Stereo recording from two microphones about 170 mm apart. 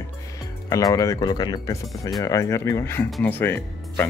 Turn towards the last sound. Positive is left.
turn(degrees=10)  # may be behind; listen again after turning